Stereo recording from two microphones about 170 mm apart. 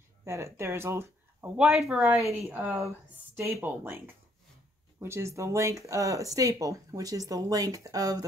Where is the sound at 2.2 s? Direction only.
15° right (ahead or behind).